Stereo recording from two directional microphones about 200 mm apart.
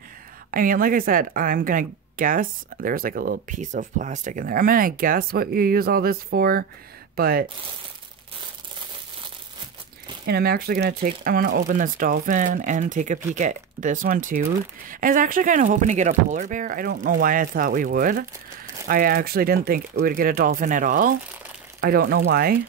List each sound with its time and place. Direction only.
0.5 s speech: 45° right (ahead or behind)
10.2 s speech: 50° right (ahead or behind)